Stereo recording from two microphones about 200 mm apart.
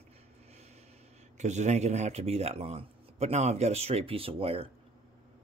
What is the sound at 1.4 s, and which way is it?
Speech, 35° right (ahead or behind).